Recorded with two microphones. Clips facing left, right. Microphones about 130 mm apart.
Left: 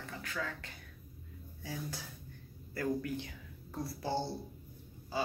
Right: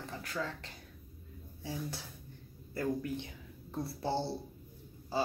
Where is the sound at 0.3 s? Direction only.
30° right (ahead or behind).